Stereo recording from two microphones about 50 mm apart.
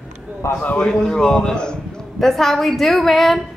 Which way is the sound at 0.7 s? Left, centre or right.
Left.